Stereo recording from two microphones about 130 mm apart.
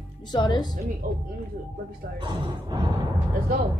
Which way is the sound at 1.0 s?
90° right.